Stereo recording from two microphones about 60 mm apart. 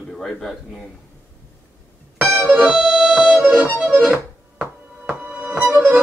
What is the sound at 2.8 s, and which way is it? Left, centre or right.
Music, centre.